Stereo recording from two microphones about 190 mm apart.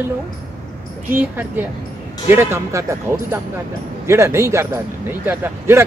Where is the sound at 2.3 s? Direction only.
15° right (ahead or behind).